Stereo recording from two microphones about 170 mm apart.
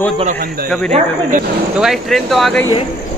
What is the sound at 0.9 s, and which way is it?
Speech, 50° right (ahead or behind).